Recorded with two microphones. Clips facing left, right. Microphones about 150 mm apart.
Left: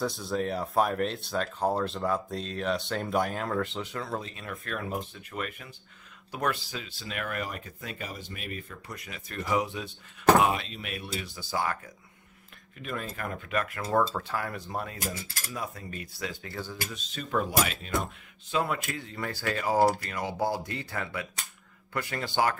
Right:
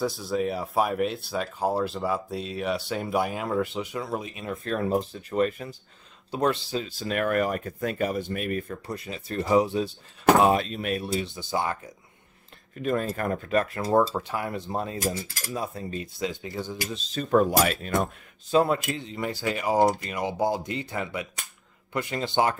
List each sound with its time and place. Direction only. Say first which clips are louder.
0.0 s speech: right 3 dB; centre (ahead or behind)
4.6 s speech: right 9 dB; 30° right (ahead or behind)
6.3 s cutlery: right 6 dB; 25° right (ahead or behind)
6.9 s speech: right 10 dB; 45° right (ahead or behind)
8.8 s speech: right 8 dB; 30° right (ahead or behind)
11.1 s cutlery: right 4 dB; 25° right (ahead or behind)
12.7 s speech: right 9 dB; 40° right (ahead or behind); by 14.0 s 25° right (ahead or behind)
14.1 s cutlery: right 3 dB; 20° right (ahead or behind)
17.1 s speech: right 8 dB; 40° right (ahead or behind)
18.5 s speech: right 7 dB; 35° right (ahead or behind)
18.8 s cutlery: right 5 dB; 20° right (ahead or behind)